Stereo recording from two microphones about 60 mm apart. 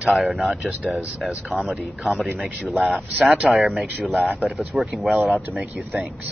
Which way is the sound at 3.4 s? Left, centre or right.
Centre.